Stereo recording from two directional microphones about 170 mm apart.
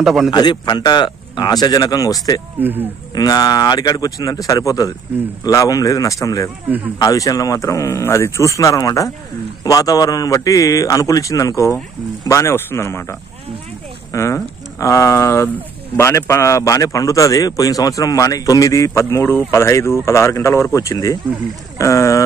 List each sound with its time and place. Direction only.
0.0 s a man's voice: centre (ahead or behind)
0.3 s speech: 25° left (ahead or behind)
2.6 s speech: 10° right (ahead or behind)
3.2 s speech: 20° left (ahead or behind)
14.1 s speech: 15° left (ahead or behind)